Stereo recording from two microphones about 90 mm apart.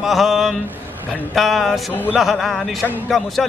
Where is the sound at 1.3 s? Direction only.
Centre (ahead or behind).